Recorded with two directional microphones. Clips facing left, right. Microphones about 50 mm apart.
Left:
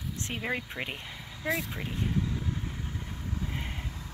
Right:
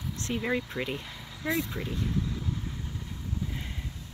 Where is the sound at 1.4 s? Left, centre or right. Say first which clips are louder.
Right 1 dB; centre.